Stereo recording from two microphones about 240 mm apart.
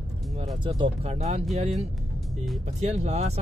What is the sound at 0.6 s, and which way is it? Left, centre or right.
Speech, right.